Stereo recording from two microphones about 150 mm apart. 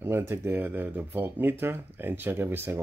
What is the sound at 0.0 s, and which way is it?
Speech, 15° right (ahead or behind).